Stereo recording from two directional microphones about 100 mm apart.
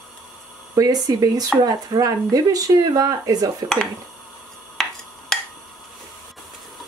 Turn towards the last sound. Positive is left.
turn(degrees=5)  # may be behind; listen again after turning